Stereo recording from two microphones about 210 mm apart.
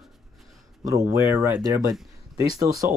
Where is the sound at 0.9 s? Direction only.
15° right (ahead or behind).